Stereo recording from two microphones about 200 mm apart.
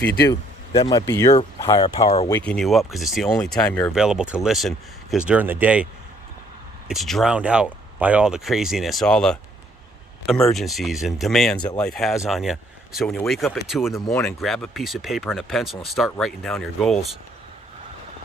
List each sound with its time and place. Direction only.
0.0 s speech: 50° left (ahead or behind)
0.3 s speech: 20° left (ahead or behind)
2.2 s speech: 10° left (ahead or behind); by 5.9 s 5° right (ahead or behind)
6.9 s speech: centre (ahead or behind)